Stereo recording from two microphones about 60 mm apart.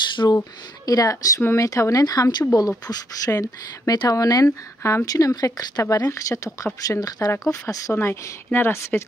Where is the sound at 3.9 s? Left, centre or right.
Left.